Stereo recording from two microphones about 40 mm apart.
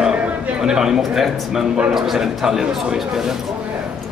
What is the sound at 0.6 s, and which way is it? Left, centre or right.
A man's voice, centre.